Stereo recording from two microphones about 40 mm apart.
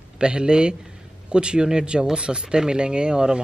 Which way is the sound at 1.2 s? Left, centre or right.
Right.